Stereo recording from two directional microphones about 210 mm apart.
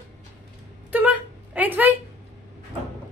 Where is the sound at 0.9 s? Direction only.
5° right (ahead or behind).